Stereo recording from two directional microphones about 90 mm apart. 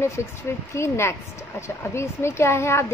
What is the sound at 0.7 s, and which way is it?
A woman's voice, 30° left (ahead or behind).